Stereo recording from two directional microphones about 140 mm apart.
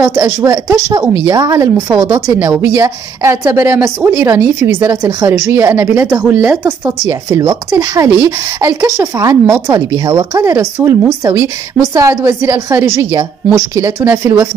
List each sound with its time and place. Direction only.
0.0 s a woman's voice: 15° right (ahead or behind)
7.1 s a woman's voice: 25° right (ahead or behind)